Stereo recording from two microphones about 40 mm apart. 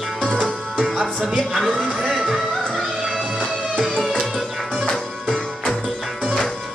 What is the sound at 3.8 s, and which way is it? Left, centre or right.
Music, centre.